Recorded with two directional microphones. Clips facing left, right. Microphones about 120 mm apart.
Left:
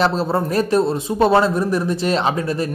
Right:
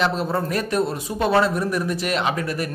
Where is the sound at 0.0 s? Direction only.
30° left (ahead or behind).